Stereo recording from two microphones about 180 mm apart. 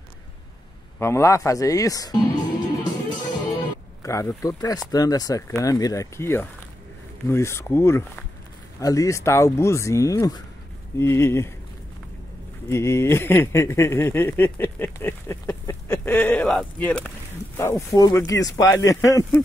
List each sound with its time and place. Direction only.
0.9 s speech: 15° left (ahead or behind)
4.0 s speech: 15° left (ahead or behind)
12.6 s speech: 15° left (ahead or behind)
17.6 s speech: 15° left (ahead or behind)